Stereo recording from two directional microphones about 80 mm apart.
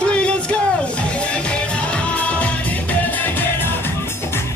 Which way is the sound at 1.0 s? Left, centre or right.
Centre.